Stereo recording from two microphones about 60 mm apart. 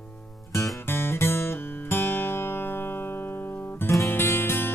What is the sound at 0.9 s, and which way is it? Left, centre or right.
Music, left.